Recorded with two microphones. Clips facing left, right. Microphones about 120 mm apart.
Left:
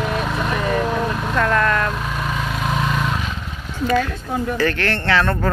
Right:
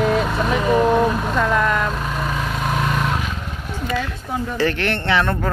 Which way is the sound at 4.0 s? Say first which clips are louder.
Left 2 dB; 20° right (ahead or behind).